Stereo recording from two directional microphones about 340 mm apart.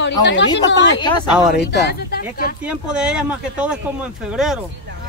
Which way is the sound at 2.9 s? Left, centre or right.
Centre.